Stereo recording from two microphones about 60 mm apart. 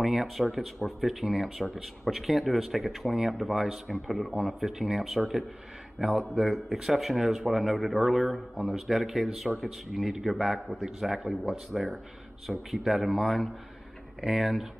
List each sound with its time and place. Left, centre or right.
0.0 s speech: centre